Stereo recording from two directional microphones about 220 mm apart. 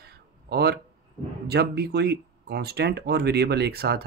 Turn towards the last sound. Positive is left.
turn(degrees=-45)  # may be behind; listen again after turning